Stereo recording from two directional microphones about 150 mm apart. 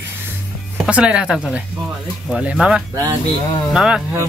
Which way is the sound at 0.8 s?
5° right (ahead or behind).